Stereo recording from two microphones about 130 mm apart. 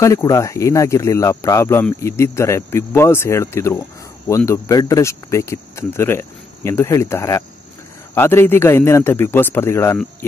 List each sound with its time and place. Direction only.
0.0 s speech: 25° left (ahead or behind)